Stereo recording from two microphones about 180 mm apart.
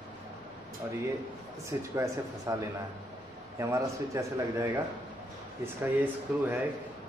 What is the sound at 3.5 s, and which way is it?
Speech, 15° right (ahead or behind).